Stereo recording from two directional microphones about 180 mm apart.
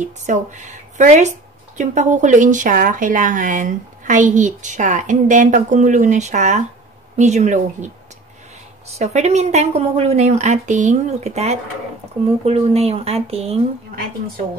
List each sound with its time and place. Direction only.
0.0 s a woman's voice: 40° right (ahead or behind)